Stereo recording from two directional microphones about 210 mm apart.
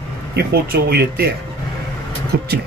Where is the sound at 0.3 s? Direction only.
50° right (ahead or behind).